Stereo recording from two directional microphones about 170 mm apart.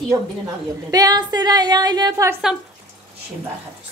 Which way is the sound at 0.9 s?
20° right (ahead or behind).